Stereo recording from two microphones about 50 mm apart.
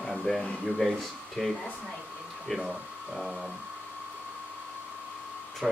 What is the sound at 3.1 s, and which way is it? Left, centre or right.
Speech, centre.